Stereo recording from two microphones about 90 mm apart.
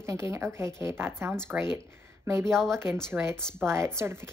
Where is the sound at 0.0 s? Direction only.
30° right (ahead or behind).